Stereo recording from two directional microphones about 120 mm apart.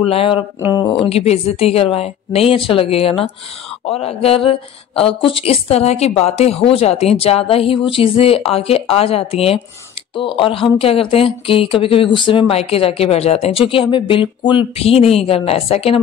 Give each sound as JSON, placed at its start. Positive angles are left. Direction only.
{"t": 0.0, "sound": "speech", "side_deg": 50}
{"t": 0.7, "sound": "speech", "side_deg": 35}
{"t": 1.0, "sound": "a woman's voice", "side_deg": 60}